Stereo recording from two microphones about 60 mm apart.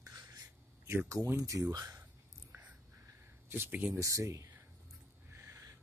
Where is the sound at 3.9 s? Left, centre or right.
Right.